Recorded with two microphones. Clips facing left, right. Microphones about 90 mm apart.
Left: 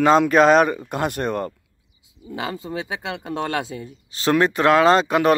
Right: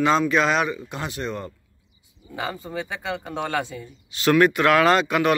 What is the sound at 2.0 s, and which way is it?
Speech, 90° left.